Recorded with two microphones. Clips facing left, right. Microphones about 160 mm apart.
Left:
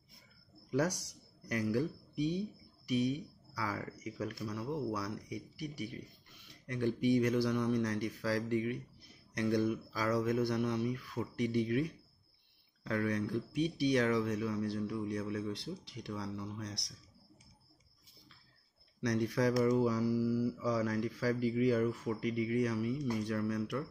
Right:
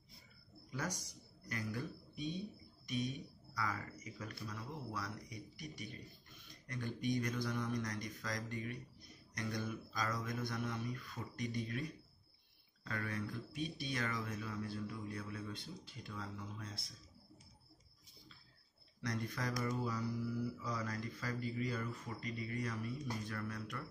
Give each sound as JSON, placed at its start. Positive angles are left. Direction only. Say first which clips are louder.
{"t": 0.7, "sound": "a man's voice", "louder": "left 11 dB", "side_deg": 70}
{"t": 12.8, "sound": "speech", "louder": "left 9 dB", "side_deg": 70}
{"t": 18.9, "sound": "speech", "louder": "left 10 dB", "side_deg": 75}
{"t": 19.6, "sound": "speech", "louder": "left 10 dB", "side_deg": 85}
{"t": 20.6, "sound": "speech", "louder": "left 9 dB", "side_deg": 75}